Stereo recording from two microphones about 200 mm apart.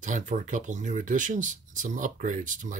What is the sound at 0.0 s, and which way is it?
Speech, 40° right (ahead or behind).